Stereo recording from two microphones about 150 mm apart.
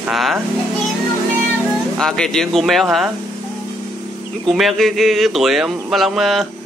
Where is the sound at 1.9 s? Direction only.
5° left (ahead or behind).